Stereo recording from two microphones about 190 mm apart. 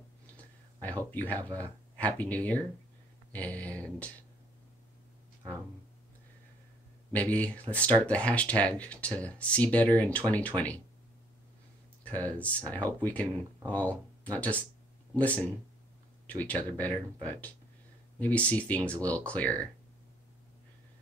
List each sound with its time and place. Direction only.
0.7 s speech: 10° left (ahead or behind)
7.1 s speech: 10° left (ahead or behind)
12.4 s speech: 5° left (ahead or behind)